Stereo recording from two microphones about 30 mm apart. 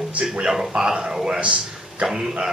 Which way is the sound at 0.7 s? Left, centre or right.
Right.